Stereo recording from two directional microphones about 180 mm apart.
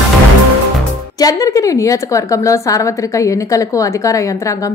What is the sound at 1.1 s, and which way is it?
A woman's voice, 20° left (ahead or behind).